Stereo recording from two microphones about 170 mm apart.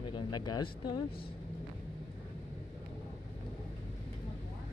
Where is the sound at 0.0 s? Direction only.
25° left (ahead or behind).